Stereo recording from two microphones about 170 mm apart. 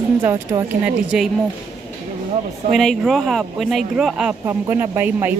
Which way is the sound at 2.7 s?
Centre (ahead or behind).